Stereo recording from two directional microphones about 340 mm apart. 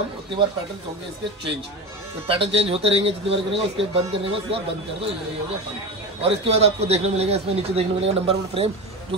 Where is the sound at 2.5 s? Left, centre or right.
Centre.